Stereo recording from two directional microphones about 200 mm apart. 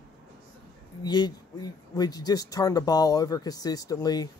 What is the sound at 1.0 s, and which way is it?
Speech, 20° left (ahead or behind).